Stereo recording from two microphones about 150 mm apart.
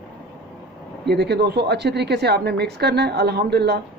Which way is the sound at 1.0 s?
90° right.